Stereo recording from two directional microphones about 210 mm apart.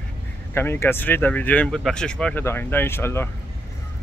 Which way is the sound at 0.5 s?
10° left (ahead or behind).